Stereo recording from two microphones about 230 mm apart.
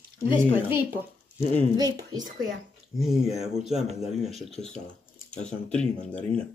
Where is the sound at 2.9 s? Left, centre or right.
Centre.